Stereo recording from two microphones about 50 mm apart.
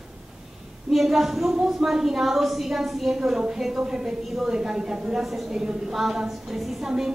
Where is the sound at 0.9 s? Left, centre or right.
Centre.